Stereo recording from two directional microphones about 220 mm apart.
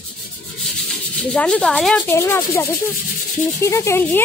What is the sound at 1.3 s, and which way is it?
Speech, 5° left (ahead or behind).